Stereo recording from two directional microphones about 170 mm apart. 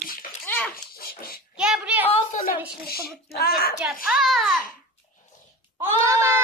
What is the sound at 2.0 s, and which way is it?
Speech, 35° left (ahead or behind).